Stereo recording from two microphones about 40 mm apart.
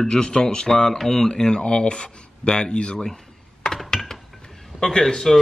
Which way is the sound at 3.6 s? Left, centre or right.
Centre.